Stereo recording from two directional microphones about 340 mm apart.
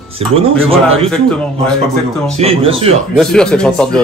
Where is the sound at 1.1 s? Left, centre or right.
Centre.